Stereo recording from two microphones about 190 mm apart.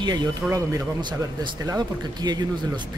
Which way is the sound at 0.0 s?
20° right (ahead or behind).